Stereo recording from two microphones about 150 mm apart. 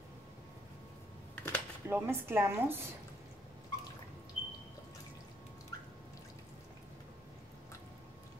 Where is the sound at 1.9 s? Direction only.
15° right (ahead or behind).